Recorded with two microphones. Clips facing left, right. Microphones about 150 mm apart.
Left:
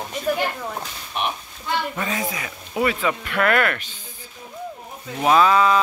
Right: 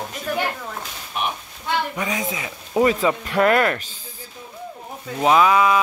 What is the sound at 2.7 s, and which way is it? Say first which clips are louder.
Speech: right 4 dB; 35° right (ahead or behind).